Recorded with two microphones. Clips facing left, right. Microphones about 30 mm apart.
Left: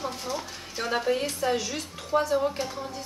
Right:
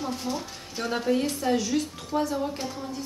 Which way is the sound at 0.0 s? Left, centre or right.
Centre.